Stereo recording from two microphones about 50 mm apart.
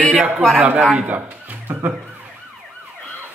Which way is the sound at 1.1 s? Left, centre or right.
Right.